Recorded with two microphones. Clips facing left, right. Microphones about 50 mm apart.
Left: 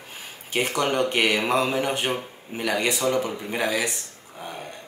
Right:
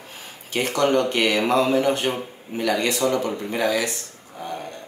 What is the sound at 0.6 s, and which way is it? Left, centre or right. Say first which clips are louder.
A man's voice: right 3 dB; centre.